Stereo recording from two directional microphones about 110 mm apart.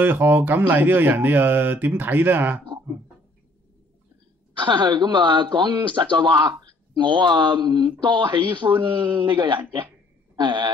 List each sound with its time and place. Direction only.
0.0 s speech: 15° right (ahead or behind)
4.6 s speech: 45° right (ahead or behind)
10.3 s a sound: 45° right (ahead or behind)